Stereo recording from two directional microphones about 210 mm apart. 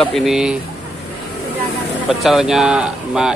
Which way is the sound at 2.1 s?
Centre (ahead or behind).